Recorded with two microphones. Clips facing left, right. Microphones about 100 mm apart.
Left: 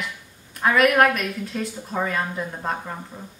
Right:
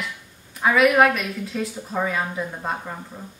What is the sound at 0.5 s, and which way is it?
Speech, centre (ahead or behind).